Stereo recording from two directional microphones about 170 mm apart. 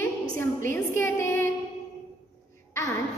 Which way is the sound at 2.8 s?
20° left (ahead or behind).